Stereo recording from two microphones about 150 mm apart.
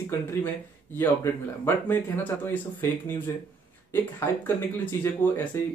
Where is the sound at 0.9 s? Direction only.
15° left (ahead or behind).